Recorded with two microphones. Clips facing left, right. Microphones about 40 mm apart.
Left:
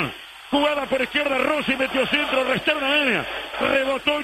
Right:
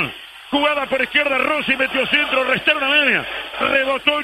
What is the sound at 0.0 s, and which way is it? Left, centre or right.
A man's voice, centre.